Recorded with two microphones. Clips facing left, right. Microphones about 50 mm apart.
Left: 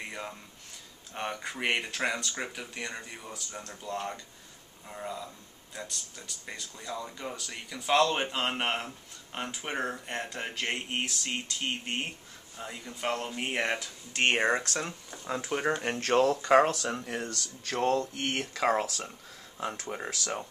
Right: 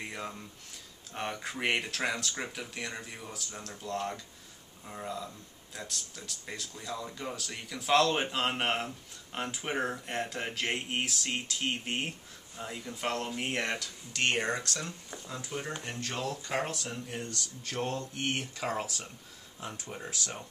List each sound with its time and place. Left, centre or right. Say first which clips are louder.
0.0 s a sound: even; centre
1.1 s speech: left 1 dB; centre; by 15.0 s left
15.2 s speech: left 9 dB; left
16.4 s speech: left 11 dB; left
18.4 s speech: left 8 dB; left
19.9 s speech: left 5 dB; left